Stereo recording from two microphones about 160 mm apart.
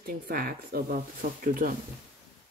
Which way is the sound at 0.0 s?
65° right (ahead or behind).